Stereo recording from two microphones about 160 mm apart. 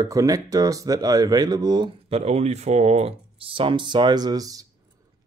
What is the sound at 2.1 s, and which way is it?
Speech, 40° right (ahead or behind).